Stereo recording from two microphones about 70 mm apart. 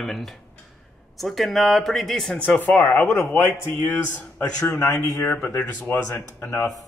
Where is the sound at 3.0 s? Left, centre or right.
Left.